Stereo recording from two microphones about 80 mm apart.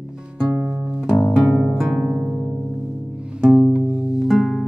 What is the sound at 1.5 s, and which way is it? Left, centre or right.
Music, centre.